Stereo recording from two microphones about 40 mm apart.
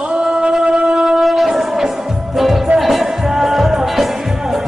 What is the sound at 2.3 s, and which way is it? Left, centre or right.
Music, centre.